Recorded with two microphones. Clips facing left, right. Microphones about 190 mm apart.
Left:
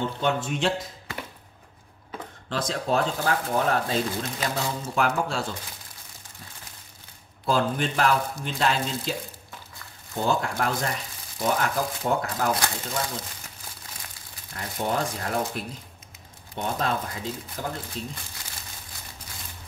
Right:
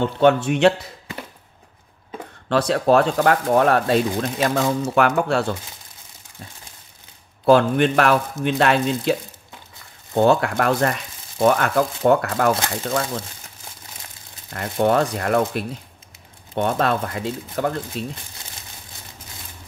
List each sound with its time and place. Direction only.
0.0 s speech: 65° right (ahead or behind)
2.5 s speech: 70° right (ahead or behind)
7.4 s speech: 65° right (ahead or behind)
10.1 s speech: 65° right (ahead or behind); by 12.5 s 85° right
14.5 s speech: 65° right (ahead or behind)